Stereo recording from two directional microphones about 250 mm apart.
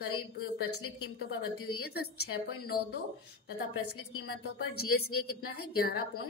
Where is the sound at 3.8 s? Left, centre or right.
Left.